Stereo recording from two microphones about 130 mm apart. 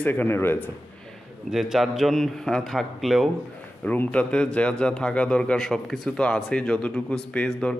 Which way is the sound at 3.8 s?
10° left (ahead or behind).